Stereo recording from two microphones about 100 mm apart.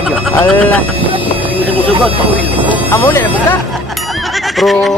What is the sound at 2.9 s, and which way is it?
Speech, 25° left (ahead or behind).